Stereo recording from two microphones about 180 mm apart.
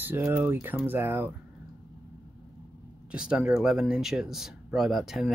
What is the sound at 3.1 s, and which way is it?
Speech, 5° right (ahead or behind).